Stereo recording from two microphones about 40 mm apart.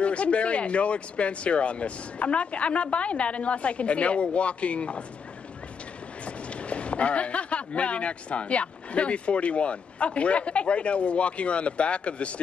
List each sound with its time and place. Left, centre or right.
0.0 s speech: left
6.2 s speech: left